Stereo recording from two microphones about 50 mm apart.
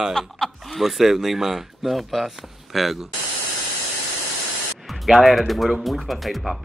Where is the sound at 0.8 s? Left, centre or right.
Centre.